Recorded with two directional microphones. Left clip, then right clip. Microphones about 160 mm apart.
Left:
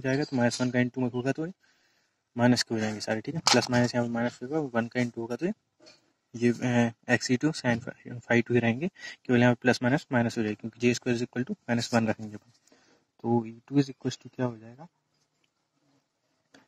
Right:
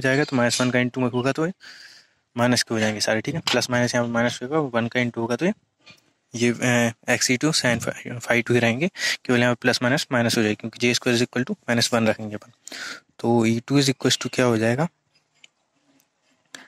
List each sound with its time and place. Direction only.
0.0 s speech: 10° right (ahead or behind)
5.5 s speech: 15° right (ahead or behind)
13.7 s speech: 40° right (ahead or behind)